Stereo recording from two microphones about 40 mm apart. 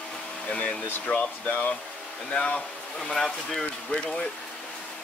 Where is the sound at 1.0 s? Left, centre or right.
Left.